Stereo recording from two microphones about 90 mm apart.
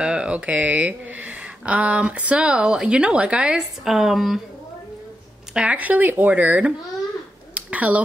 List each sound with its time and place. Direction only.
0.0 s speech: 10° right (ahead or behind)
5.5 s speech: 15° right (ahead or behind)
7.5 s a sound: 15° right (ahead or behind)